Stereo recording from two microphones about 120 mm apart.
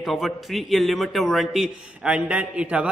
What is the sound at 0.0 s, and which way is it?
A man's voice, centre (ahead or behind).